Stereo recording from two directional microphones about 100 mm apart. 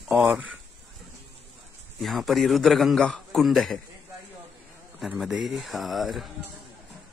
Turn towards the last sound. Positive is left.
turn(degrees=0)  # may be behind; listen again after turning